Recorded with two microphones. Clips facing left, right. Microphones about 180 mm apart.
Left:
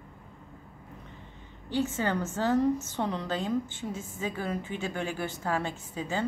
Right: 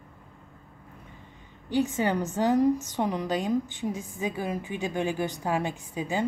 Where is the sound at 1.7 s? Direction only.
15° right (ahead or behind).